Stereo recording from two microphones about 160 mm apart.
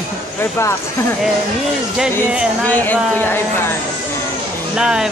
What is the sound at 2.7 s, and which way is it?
Speech, 10° left (ahead or behind).